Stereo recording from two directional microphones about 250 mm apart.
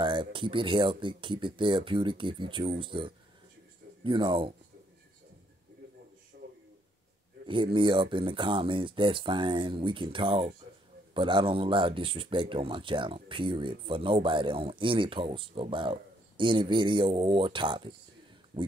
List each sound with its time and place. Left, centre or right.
0.0 s speech: centre
7.4 s speech: centre